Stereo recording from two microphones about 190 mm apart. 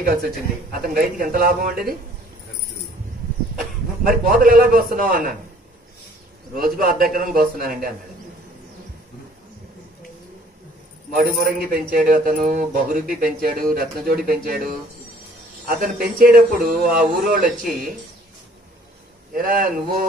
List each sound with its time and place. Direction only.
0.0 s a man's voice: 50° right (ahead or behind)
4.0 s a man's voice: 45° right (ahead or behind)
6.5 s a man's voice: 50° right (ahead or behind)
11.1 s a man's voice: 50° right (ahead or behind)
15.7 s a man's voice: 50° right (ahead or behind)
19.3 s a man's voice: 50° right (ahead or behind)